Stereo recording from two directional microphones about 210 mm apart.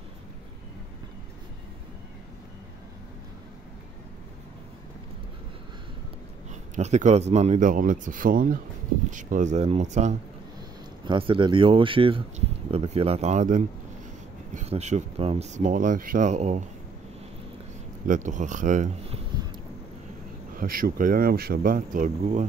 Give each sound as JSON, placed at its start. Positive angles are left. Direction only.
{"t": 6.7, "sound": "speech", "side_deg": -35}
{"t": 18.0, "sound": "speech", "side_deg": -35}
{"t": 20.5, "sound": "speech", "side_deg": -45}